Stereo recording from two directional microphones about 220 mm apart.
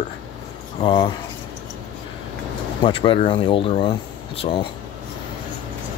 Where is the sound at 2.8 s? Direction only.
25° left (ahead or behind).